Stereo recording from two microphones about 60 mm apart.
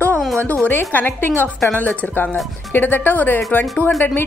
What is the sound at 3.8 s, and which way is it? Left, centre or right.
Speech, right.